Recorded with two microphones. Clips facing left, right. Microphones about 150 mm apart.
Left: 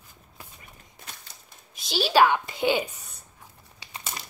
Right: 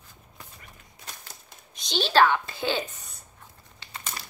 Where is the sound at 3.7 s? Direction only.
15° left (ahead or behind).